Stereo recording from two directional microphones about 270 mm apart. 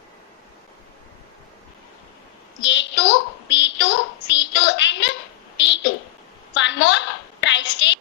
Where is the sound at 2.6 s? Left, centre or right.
Left.